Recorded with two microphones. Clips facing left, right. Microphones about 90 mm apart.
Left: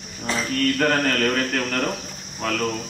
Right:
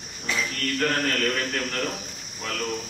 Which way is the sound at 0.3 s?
35° left (ahead or behind).